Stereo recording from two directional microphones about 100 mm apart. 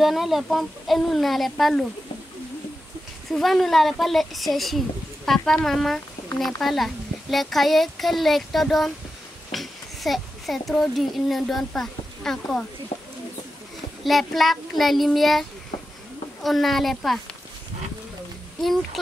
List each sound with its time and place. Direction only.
0.0 s speech: centre (ahead or behind)
3.3 s a child's voice: centre (ahead or behind)
12.9 s bird: 90° left
14.0 s speech: centre (ahead or behind)
16.4 s speech: centre (ahead or behind)